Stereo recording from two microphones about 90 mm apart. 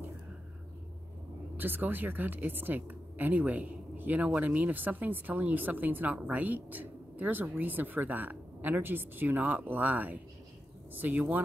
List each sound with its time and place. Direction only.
1.6 s a woman's voice: 20° right (ahead or behind)